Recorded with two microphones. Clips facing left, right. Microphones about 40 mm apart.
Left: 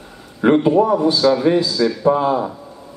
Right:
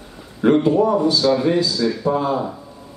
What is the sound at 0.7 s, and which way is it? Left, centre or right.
Speech, centre.